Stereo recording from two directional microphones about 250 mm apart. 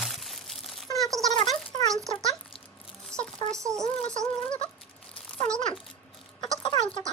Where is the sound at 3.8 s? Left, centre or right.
Right.